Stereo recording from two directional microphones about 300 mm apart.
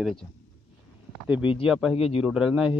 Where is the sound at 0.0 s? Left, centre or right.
Centre.